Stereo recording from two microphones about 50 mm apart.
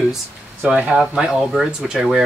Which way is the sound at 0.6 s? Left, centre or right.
Right.